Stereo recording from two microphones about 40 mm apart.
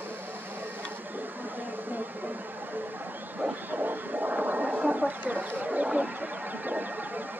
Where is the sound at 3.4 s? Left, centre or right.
Right.